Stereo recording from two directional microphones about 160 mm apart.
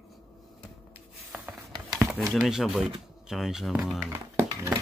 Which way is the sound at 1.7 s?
20° right (ahead or behind).